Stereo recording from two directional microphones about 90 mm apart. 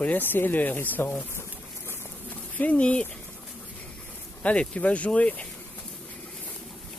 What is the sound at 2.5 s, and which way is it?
Speech, 15° left (ahead or behind).